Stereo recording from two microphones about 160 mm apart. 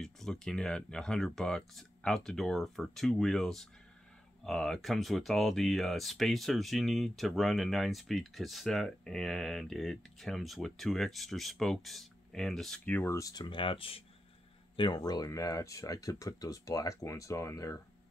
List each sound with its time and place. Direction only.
0.0 s speech: 5° left (ahead or behind); by 17.7 s 20° left (ahead or behind)